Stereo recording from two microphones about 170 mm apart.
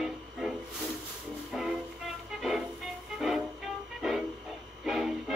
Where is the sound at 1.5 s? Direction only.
Centre (ahead or behind).